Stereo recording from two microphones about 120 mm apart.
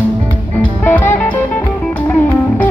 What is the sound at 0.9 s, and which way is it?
Music, 20° left (ahead or behind).